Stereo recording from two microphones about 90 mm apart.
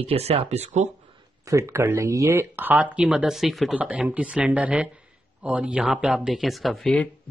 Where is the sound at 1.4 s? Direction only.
35° right (ahead or behind).